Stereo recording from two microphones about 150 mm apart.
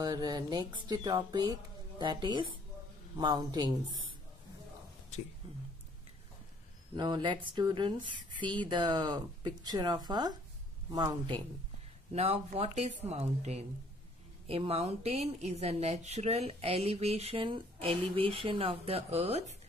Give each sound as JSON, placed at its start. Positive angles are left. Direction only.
{"t": 0.0, "sound": "speech", "side_deg": -30}
{"t": 5.4, "sound": "speech", "side_deg": -40}
{"t": 7.0, "sound": "speech", "side_deg": -30}
{"t": 12.1, "sound": "speech", "side_deg": -45}